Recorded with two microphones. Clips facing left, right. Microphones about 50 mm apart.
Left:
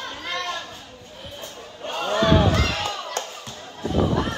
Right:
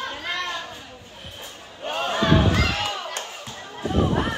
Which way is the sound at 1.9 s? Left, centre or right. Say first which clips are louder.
Left 1 dB; centre.